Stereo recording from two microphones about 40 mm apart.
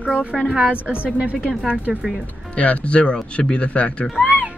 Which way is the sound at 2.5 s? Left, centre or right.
Left.